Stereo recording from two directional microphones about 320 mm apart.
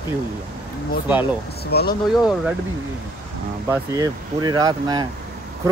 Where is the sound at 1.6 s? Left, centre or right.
Left.